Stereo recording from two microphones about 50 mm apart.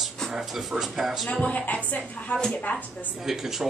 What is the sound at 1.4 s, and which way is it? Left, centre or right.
A woman's voice, left.